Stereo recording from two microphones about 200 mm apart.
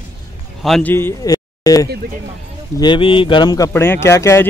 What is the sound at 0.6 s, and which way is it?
Speech, 5° left (ahead or behind).